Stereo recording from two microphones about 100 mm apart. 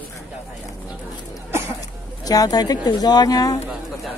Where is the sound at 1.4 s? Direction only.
25° right (ahead or behind).